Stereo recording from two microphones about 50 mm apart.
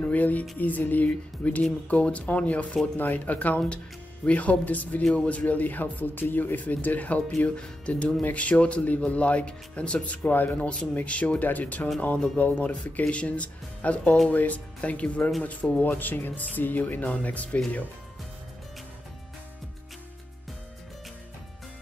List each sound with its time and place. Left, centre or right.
0.1 s speech: left
11.0 s speech: left